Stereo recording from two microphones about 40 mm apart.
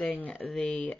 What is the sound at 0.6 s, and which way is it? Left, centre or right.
Speech, left.